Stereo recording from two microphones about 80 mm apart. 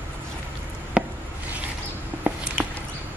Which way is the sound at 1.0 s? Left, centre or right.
Centre.